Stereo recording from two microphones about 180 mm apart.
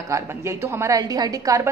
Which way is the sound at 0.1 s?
15° right (ahead or behind).